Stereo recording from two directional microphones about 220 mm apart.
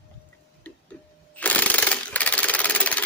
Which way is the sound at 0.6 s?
5° left (ahead or behind).